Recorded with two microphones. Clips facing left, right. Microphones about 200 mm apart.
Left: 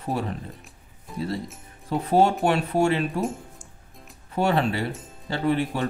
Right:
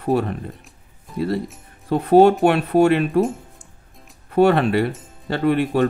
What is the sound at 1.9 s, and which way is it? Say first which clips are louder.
Speech: right 8 dB; 60° right (ahead or behind).